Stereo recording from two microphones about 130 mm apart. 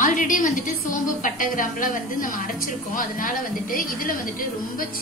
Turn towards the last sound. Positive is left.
turn(degrees=90)